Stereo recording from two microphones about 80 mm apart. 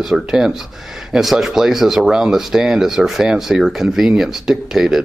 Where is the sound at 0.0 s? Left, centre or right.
Centre.